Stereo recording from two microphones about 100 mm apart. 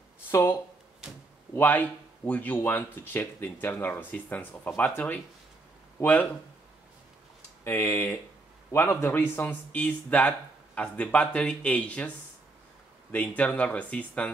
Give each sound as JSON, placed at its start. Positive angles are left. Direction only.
{"t": 0.3, "sound": "speech", "side_deg": 25}
{"t": 7.6, "sound": "speech", "side_deg": 20}
{"t": 13.4, "sound": "speech", "side_deg": 15}